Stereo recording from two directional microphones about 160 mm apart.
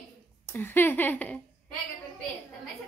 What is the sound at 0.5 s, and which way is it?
Speech, 10° left (ahead or behind).